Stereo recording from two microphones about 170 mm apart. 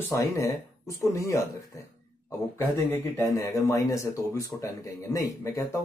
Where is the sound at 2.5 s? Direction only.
15° left (ahead or behind).